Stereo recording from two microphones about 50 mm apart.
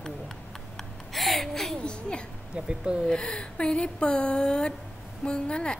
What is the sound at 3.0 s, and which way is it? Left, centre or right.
A woman's voice, centre.